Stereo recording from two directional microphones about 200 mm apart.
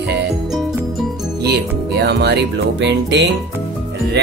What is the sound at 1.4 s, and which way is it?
Music, 55° right (ahead or behind).